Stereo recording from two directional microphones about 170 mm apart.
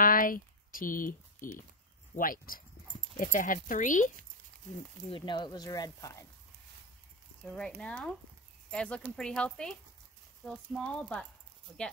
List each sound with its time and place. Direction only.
0.0 s speech: 55° left (ahead or behind)
5.1 s speech: 30° left (ahead or behind)
7.4 s speech: 5° left (ahead or behind)